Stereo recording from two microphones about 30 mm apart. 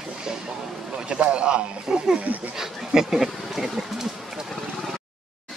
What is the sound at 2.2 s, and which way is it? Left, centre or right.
Speech, right.